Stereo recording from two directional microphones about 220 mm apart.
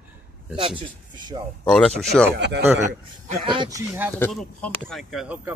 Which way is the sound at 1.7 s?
Centre (ahead or behind).